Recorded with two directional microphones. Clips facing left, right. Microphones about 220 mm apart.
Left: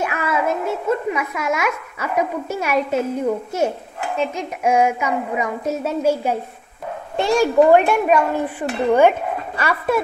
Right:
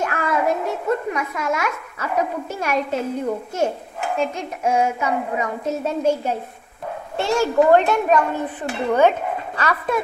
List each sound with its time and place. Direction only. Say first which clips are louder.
0.0 s a child's voice: even; 10° left (ahead or behind)
4.2 s a child's voice: left 2 dB; 10° left (ahead or behind)